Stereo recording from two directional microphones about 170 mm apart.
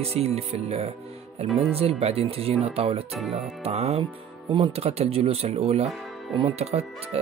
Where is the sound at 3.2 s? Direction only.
Centre (ahead or behind).